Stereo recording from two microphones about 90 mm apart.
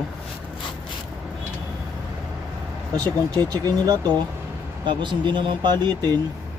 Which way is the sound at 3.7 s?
50° right (ahead or behind).